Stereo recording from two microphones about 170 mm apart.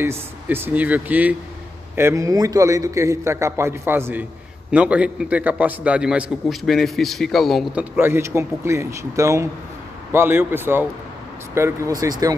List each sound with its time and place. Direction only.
0.0 s a man's voice: 15° right (ahead or behind)
7.9 s a man's voice: 15° right (ahead or behind)